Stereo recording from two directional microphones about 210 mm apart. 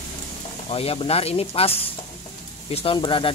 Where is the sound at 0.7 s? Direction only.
25° left (ahead or behind).